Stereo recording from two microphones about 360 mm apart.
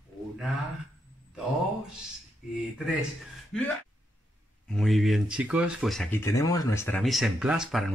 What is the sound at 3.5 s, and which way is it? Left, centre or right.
Speech, centre.